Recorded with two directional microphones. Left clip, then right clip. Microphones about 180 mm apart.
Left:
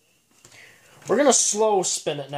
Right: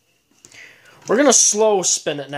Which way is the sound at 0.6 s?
30° right (ahead or behind).